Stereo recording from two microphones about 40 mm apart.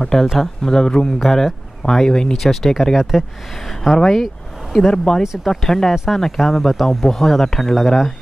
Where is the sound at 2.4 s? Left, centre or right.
Centre.